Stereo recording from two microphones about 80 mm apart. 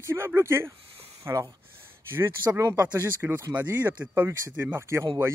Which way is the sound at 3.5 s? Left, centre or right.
Right.